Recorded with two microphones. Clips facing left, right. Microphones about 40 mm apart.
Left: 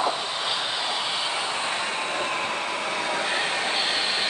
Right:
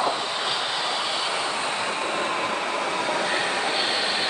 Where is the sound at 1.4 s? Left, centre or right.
Left.